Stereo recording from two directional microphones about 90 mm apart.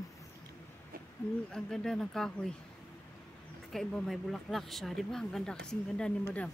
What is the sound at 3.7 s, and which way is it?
Speech, centre (ahead or behind).